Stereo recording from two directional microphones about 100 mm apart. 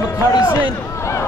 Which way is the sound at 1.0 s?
30° left (ahead or behind).